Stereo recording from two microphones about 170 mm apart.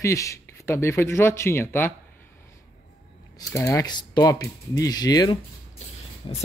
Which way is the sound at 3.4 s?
15° left (ahead or behind).